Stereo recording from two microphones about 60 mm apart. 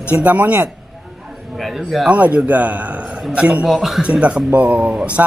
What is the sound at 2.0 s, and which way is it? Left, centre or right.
Speech, right.